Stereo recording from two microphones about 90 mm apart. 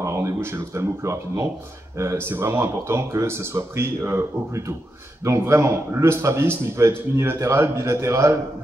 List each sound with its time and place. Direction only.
0.0 s a man's voice: 35° right (ahead or behind)